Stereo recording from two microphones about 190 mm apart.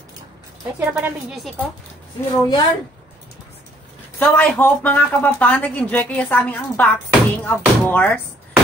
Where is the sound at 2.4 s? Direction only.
20° left (ahead or behind).